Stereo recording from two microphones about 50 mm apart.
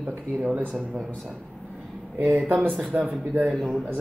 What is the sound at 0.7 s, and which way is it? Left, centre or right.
Speech, centre.